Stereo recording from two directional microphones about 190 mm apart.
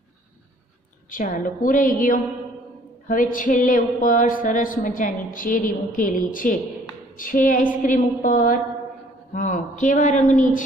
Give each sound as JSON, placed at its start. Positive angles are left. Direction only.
{"t": 1.1, "sound": "speech", "side_deg": 45}